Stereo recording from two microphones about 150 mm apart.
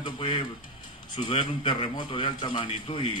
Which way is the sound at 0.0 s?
30° left (ahead or behind).